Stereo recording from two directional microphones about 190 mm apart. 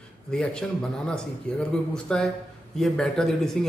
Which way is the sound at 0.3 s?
5° left (ahead or behind).